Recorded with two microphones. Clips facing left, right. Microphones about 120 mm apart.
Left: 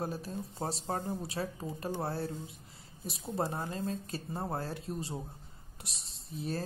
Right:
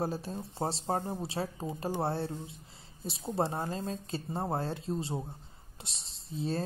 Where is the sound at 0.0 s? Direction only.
30° right (ahead or behind).